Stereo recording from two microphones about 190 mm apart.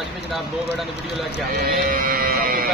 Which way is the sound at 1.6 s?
50° right (ahead or behind).